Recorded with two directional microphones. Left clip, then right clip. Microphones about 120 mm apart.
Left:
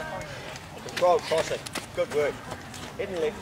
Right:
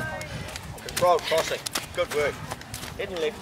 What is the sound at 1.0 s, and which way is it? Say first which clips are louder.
Speech: right 1 dB; 35° right (ahead or behind).